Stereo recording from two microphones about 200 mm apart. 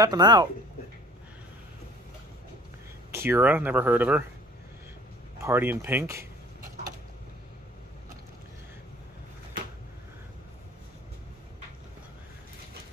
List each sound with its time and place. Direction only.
0.0 s speech: 20° right (ahead or behind)
3.1 s speech: 10° right (ahead or behind)
5.4 s speech: 10° right (ahead or behind)